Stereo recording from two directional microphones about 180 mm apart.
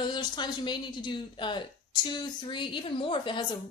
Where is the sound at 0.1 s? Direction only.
25° left (ahead or behind).